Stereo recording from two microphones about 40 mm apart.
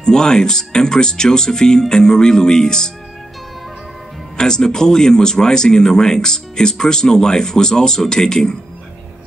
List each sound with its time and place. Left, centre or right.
0.0 s speech: centre
4.4 s speech: centre